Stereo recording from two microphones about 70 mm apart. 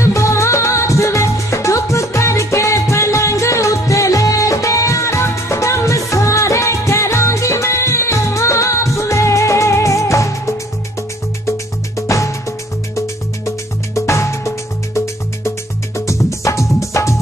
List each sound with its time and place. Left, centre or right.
0.0 s music: left
12.1 s music: left
16.1 s music: left